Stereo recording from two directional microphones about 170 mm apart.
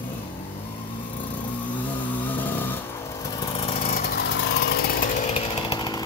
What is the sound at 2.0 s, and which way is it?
Chainsaw, 10° left (ahead or behind).